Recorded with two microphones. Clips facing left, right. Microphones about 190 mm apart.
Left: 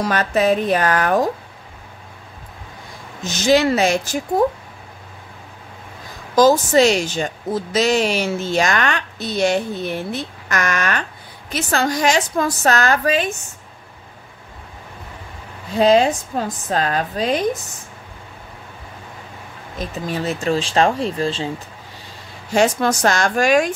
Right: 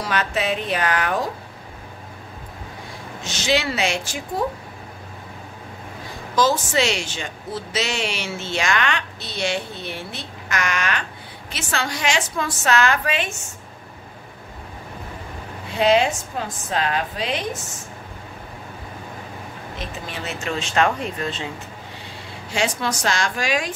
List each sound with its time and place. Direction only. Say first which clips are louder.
0.0 s a woman's voice: left 6 dB; 45° left (ahead or behind)
3.3 s a woman's voice: left 7 dB; 40° left (ahead or behind)
6.3 s a woman's voice: left 7 dB; 40° left (ahead or behind)
15.7 s a woman's voice: left 4 dB; 40° left (ahead or behind)
19.8 s a woman's voice: left 9 dB; 40° left (ahead or behind)
22.5 s a woman's voice: left 7 dB; 45° left (ahead or behind)